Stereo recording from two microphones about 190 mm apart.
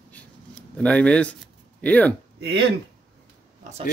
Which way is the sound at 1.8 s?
5° left (ahead or behind).